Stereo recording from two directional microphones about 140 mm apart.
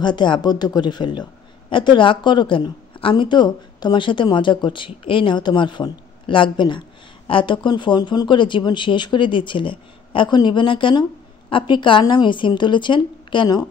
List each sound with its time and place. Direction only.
0.0 s a woman's voice: 35° left (ahead or behind)